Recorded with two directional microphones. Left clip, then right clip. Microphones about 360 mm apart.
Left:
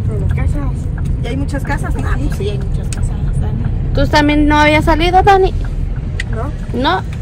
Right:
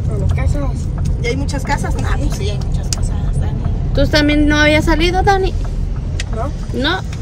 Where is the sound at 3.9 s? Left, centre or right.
Centre.